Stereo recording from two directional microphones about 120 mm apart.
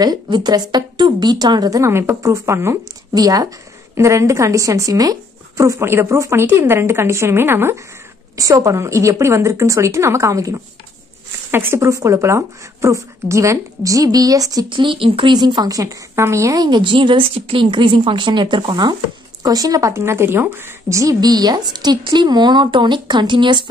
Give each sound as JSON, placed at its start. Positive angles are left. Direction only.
{"t": 0.0, "sound": "a woman's voice", "side_deg": -35}
{"t": 14.7, "sound": "a woman's voice", "side_deg": -45}